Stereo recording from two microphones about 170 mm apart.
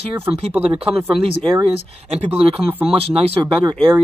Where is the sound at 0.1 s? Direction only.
10° right (ahead or behind).